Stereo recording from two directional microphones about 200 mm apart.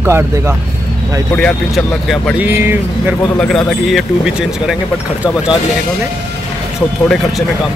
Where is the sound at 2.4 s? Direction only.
10° right (ahead or behind).